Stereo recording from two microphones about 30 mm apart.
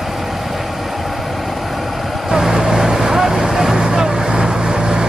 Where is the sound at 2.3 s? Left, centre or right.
Centre.